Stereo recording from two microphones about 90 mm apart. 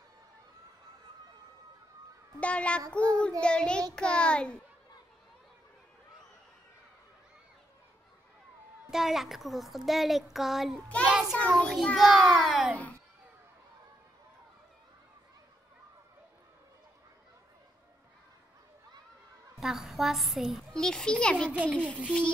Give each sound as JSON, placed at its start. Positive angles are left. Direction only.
{"t": 2.4, "sound": "child singing", "side_deg": 15}
{"t": 8.9, "sound": "a child's voice", "side_deg": -5}
{"t": 11.4, "sound": "child singing", "side_deg": 5}
{"t": 12.0, "sound": "a child's voice", "side_deg": 0}
{"t": 19.6, "sound": "a child's voice", "side_deg": -5}
{"t": 20.7, "sound": "child singing", "side_deg": 5}